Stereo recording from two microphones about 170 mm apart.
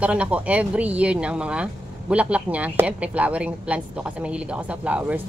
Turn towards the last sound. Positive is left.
turn(degrees=-10)  # may be behind; listen again after turning